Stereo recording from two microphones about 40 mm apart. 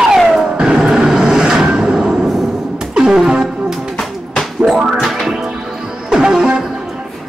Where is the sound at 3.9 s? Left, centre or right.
Centre.